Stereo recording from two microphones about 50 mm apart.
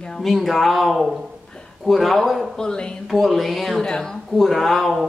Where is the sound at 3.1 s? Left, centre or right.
Centre.